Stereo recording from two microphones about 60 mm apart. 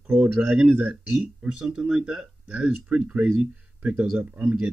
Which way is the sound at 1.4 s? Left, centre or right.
Centre.